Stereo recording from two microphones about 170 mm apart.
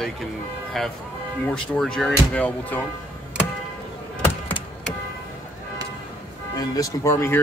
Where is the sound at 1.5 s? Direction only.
5° left (ahead or behind).